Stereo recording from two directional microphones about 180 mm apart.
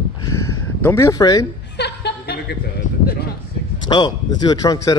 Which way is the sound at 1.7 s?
65° left (ahead or behind).